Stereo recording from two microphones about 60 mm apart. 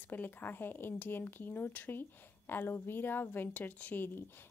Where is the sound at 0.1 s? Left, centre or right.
Left.